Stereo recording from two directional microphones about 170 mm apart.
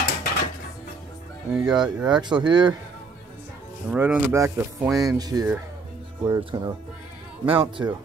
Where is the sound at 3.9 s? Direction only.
10° right (ahead or behind).